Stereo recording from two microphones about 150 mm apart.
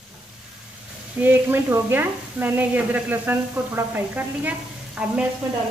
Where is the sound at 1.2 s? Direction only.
15° right (ahead or behind).